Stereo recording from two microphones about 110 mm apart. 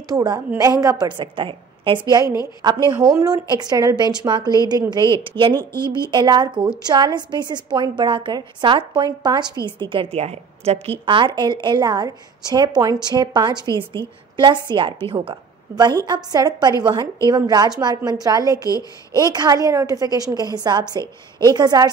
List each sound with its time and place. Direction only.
0.1 s a woman's voice: 35° right (ahead or behind)
2.0 s a woman's voice: 35° right (ahead or behind)
5.6 s a woman's voice: 20° left (ahead or behind)
5.9 s a woman's voice: 40° right (ahead or behind)
10.1 s a woman's voice: 70° right (ahead or behind)
11.1 s a woman's voice: 45° right (ahead or behind)
15.7 s a woman's voice: 40° right (ahead or behind)
21.0 s a woman's voice: 25° left (ahead or behind)
21.5 s a woman's voice: 35° right (ahead or behind)